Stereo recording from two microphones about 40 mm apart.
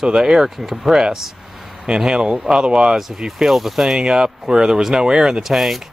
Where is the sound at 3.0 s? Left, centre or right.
Centre.